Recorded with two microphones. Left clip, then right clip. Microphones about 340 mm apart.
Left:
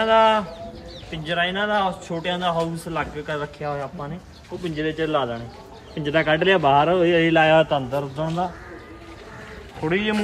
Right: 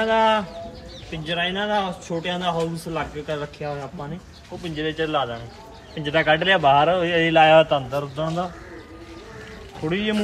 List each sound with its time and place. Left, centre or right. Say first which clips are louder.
0.0 s speech: left 2 dB; centre
4.8 s a man's voice: even; right
9.8 s speech: left 2 dB; centre